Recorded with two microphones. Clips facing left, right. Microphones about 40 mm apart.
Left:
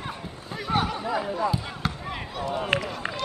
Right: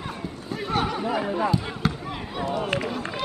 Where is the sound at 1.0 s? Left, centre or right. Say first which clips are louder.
Right 2 dB; centre.